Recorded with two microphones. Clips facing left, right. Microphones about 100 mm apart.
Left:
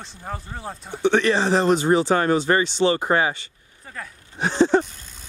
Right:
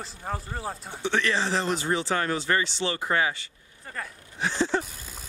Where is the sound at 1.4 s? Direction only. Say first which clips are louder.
Left 7 dB; 60° left (ahead or behind).